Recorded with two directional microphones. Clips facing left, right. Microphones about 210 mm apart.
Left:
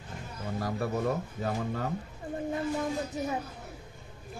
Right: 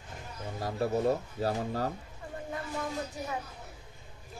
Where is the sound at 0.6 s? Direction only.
25° right (ahead or behind).